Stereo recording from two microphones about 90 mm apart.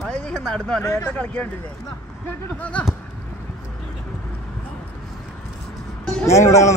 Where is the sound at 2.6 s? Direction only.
15° left (ahead or behind).